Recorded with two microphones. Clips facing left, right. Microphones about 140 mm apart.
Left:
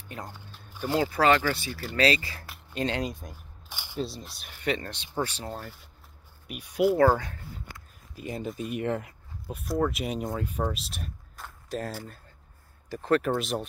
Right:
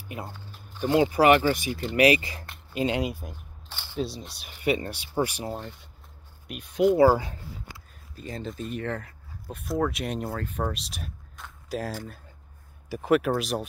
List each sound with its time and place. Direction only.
0.0 s speech: 10° right (ahead or behind)
3.6 s single-lens reflex camera: 10° left (ahead or behind)
4.0 s speech: centre (ahead or behind)
5.6 s speech: centre (ahead or behind)
7.0 s speech: 10° right (ahead or behind)
8.2 s speech: 10° left (ahead or behind)
9.6 s speech: centre (ahead or behind)
10.6 s a sound: centre (ahead or behind)
12.9 s speech: 10° right (ahead or behind)